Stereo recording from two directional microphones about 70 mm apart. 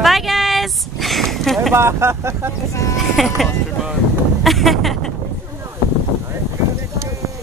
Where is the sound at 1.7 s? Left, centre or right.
Right.